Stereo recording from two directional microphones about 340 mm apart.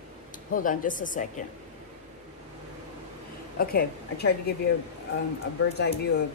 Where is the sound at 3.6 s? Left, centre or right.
Left.